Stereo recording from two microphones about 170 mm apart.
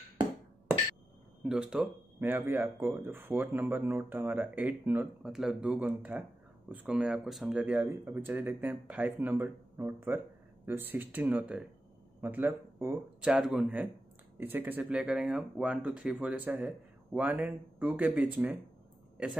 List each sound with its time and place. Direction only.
1.4 s speech: 5° right (ahead or behind)